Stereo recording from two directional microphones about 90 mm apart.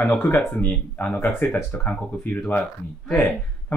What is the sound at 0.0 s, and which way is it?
Speech, 20° left (ahead or behind).